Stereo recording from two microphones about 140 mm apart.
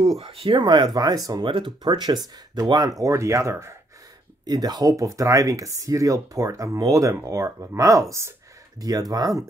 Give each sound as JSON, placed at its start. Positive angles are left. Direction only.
{"t": 0.2, "sound": "speech", "side_deg": -45}